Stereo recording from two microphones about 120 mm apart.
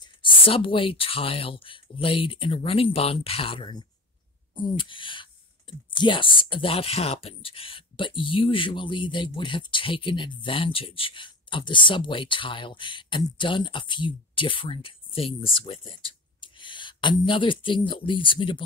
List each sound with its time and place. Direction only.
0.0 s speech: 45° left (ahead or behind)